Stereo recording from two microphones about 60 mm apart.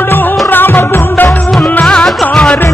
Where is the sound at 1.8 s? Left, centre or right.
Centre.